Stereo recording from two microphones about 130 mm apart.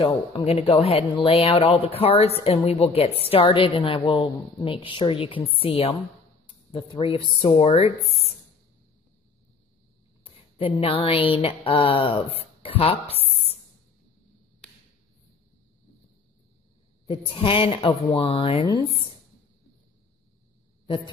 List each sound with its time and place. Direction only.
0.0 s speech: 45° left (ahead or behind)
8.1 s a sound: 50° left (ahead or behind)
10.2 s speech: 45° left (ahead or behind)
13.3 s a sound: 50° left (ahead or behind)
17.0 s speech: 45° left (ahead or behind)
20.8 s a man's voice: 40° left (ahead or behind)